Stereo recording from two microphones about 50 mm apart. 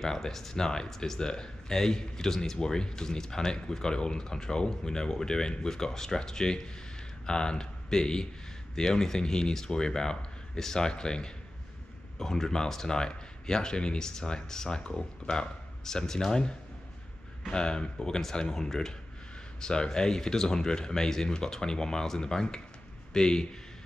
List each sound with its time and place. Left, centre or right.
0.0 s speech: centre